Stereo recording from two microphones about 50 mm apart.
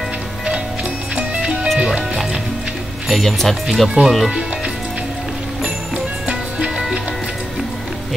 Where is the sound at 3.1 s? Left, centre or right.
Centre.